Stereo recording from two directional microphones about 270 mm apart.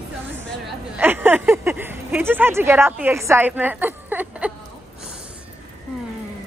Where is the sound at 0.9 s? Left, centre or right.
Centre.